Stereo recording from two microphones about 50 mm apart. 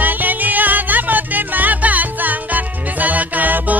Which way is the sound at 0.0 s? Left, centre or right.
Right.